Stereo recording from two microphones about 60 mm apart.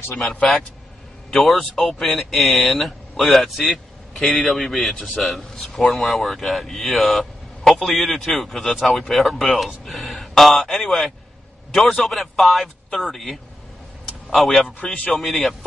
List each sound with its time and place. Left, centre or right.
0.1 s a man's voice: centre
14.8 s speech: centre
15.1 s speech: centre